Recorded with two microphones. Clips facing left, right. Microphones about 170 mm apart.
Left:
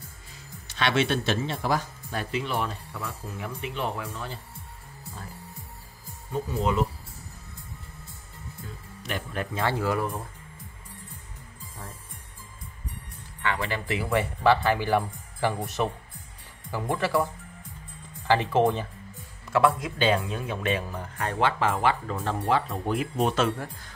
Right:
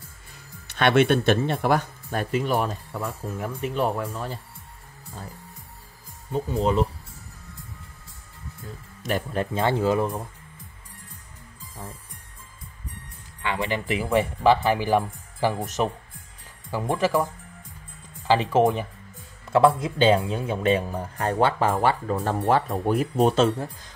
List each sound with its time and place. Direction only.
0.3 s speech: 55° right (ahead or behind)
6.3 s speech: 30° right (ahead or behind)
9.0 s speech: 40° right (ahead or behind); by 10.2 s 20° right (ahead or behind)
13.4 s speech: 15° right (ahead or behind)
19.5 s speech: 30° right (ahead or behind)